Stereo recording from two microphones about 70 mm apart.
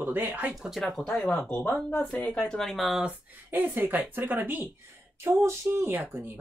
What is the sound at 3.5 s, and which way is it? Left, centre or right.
Speech, right.